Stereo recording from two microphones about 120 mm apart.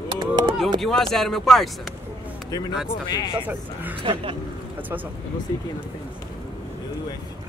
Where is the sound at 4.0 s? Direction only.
50° right (ahead or behind).